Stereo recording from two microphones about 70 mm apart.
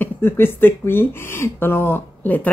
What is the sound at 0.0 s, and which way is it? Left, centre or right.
Speech, left.